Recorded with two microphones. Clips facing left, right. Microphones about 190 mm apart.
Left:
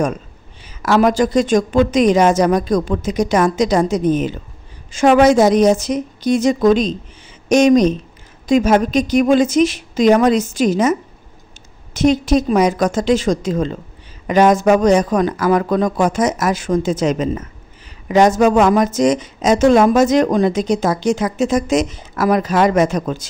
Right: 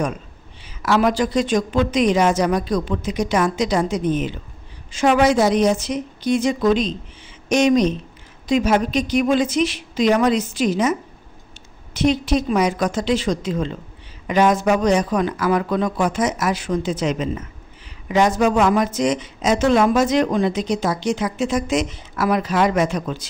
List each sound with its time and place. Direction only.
0.8 s a woman's voice: 45° left (ahead or behind)